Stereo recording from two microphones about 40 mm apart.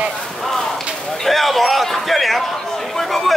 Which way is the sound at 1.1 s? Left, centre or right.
Centre.